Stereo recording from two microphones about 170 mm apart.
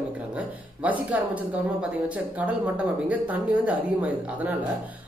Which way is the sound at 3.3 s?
10° right (ahead or behind).